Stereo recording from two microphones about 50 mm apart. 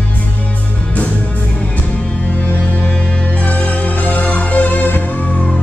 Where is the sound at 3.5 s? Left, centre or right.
Left.